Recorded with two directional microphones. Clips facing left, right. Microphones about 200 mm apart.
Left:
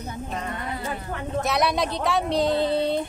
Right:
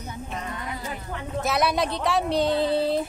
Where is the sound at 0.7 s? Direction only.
55° left (ahead or behind).